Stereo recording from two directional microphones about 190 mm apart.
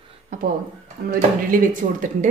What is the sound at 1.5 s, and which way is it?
Speech, 45° right (ahead or behind).